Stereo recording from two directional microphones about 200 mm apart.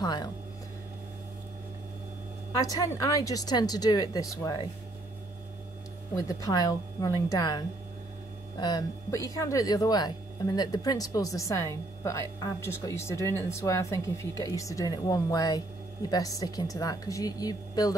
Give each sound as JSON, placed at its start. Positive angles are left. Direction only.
{"t": 0.0, "sound": "a woman's voice", "side_deg": 20}
{"t": 2.6, "sound": "speech", "side_deg": 15}
{"t": 6.1, "sound": "a woman's voice", "side_deg": 15}